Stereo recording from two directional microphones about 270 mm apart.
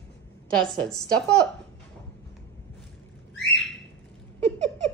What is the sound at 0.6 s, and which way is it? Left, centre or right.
Speech, centre.